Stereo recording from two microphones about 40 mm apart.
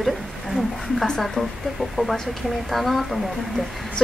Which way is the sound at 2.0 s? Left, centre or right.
Centre.